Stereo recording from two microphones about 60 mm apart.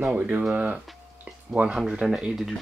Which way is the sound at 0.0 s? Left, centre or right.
Right.